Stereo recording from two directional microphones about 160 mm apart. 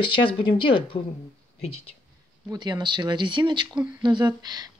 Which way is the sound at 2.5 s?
25° right (ahead or behind).